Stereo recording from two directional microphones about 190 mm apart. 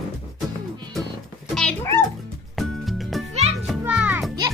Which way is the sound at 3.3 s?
35° right (ahead or behind).